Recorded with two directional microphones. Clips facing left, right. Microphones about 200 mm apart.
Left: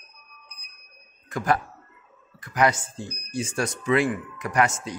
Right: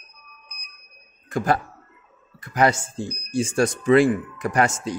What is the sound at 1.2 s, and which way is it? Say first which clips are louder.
Speech: right 2 dB; 30° right (ahead or behind).